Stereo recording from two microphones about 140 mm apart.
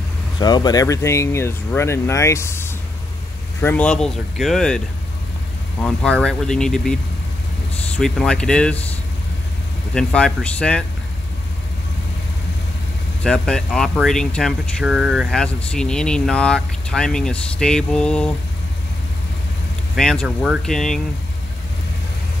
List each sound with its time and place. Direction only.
0.4 s speech: 30° left (ahead or behind); by 8.8 s 5° left (ahead or behind)
9.9 s speech: 5° left (ahead or behind)
13.2 s speech: 5° left (ahead or behind)
15.3 s speech: 5° left (ahead or behind)
20.0 s speech: 5° left (ahead or behind)